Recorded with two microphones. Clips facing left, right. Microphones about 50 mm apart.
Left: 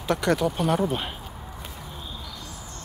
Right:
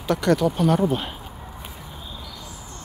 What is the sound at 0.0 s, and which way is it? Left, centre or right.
Speech, centre.